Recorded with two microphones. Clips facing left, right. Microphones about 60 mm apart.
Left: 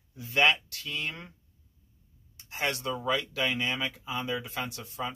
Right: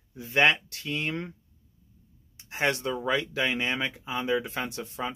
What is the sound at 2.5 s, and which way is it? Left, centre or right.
Speech, right.